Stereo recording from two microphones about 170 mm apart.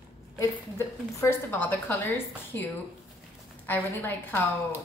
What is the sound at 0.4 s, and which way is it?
A woman's voice, 15° left (ahead or behind).